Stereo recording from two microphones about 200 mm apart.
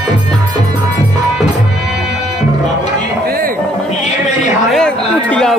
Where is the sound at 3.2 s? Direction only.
45° right (ahead or behind).